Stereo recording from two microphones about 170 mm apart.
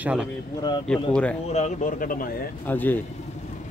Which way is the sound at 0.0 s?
5° right (ahead or behind).